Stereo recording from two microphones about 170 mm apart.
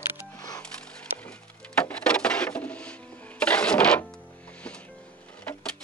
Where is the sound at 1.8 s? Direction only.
5° left (ahead or behind).